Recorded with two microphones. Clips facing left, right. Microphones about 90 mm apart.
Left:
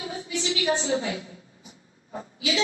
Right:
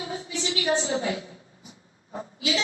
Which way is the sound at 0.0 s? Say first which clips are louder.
Even; 35° right (ahead or behind).